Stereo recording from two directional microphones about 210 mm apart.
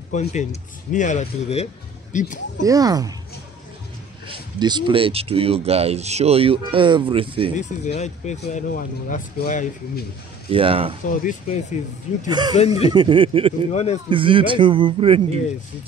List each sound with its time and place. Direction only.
0.1 s speech: 35° left (ahead or behind)
2.6 s speech: 15° right (ahead or behind)
4.3 s speech: 20° right (ahead or behind)
7.5 s speech: 35° left (ahead or behind)
10.5 s speech: 25° right (ahead or behind)
11.1 s speech: 40° left (ahead or behind)
12.3 s speech: 20° right (ahead or behind)
12.5 s speech: 30° left (ahead or behind)
12.9 s speech: 20° right (ahead or behind)